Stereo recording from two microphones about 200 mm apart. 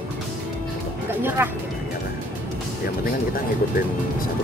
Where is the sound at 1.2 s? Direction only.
10° right (ahead or behind).